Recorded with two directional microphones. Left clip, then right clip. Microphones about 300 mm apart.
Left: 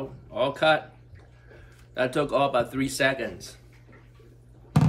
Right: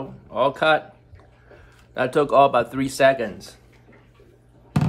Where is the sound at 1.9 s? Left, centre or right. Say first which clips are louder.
Right 7 dB; centre.